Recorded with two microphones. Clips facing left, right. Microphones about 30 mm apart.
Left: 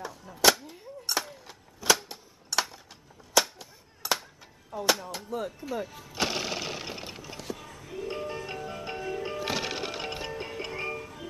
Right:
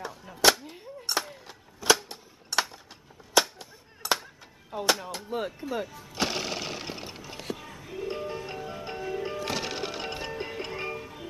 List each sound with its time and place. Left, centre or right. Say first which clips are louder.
0.0 s a sound: right 1 dB; centre
4.0 s music: right 2 dB; centre
4.7 s a sound: right 1 dB; right
5.3 s speech: right 2 dB; right
6.0 s sewing machine: left 1 dB; centre
7.5 s music: right 1 dB; centre
9.4 s music: even; centre